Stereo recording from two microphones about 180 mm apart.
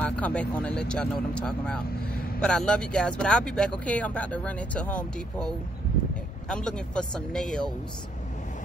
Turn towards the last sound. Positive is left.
turn(degrees=5)  # may be behind; listen again after turning